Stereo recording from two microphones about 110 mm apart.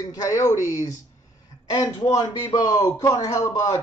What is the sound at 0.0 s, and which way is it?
Speech, 35° left (ahead or behind).